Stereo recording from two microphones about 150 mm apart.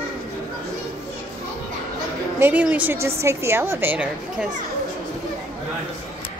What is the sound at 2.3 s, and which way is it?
A woman's voice, 10° right (ahead or behind).